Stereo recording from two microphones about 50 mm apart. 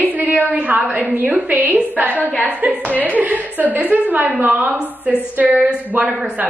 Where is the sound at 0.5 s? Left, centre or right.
Right.